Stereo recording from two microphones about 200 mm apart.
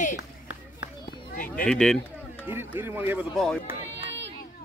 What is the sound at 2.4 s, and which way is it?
Speech, 10° right (ahead or behind).